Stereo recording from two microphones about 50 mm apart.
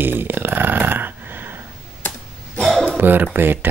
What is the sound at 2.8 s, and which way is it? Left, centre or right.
Speech, right.